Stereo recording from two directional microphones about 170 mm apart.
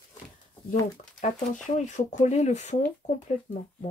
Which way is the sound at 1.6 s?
45° left (ahead or behind).